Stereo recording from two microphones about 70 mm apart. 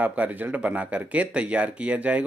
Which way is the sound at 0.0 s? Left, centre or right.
Right.